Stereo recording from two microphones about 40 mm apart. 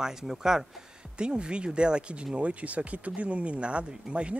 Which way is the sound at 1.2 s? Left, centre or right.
Right.